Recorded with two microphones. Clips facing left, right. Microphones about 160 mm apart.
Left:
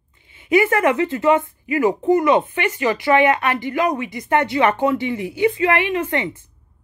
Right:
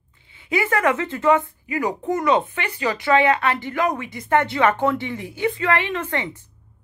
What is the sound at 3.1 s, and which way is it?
A woman's voice, 15° left (ahead or behind).